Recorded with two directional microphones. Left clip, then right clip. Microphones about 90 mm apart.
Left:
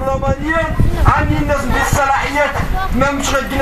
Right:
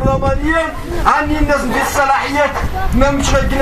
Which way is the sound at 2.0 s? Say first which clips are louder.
Right 2 dB; 15° right (ahead or behind).